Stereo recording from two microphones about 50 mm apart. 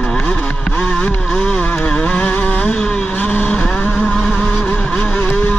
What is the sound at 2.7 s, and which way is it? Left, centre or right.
Vehicle, centre.